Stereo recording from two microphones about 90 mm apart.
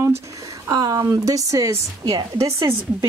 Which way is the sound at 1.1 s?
40° right (ahead or behind).